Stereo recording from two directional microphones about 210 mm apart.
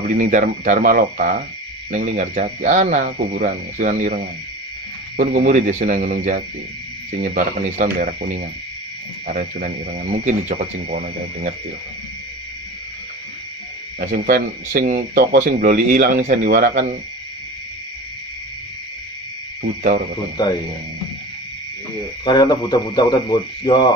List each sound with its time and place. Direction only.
0.1 s speech: 40° right (ahead or behind)
13.9 s speech: 40° right (ahead or behind)
19.6 s speech: 45° right (ahead or behind)
22.2 s speech: 20° left (ahead or behind)